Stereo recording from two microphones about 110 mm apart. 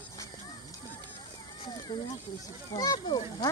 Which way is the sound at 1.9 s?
45° left (ahead or behind).